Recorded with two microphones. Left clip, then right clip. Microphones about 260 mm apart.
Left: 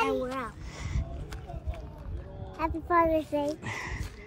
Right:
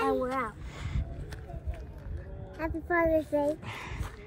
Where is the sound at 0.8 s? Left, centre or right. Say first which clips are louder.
Left 5 dB; centre.